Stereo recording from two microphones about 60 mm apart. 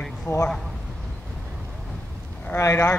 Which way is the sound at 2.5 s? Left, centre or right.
Left.